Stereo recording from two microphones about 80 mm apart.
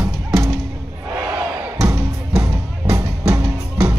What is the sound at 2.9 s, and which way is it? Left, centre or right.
Music, right.